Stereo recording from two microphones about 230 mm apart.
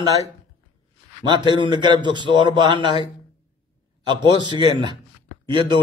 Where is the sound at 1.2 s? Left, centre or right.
Centre.